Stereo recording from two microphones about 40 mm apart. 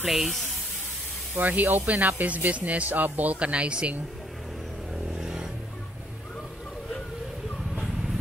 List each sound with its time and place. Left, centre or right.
0.0 s speech: centre
1.3 s speech: right
3.3 s speech: right
5.1 s vehicle: centre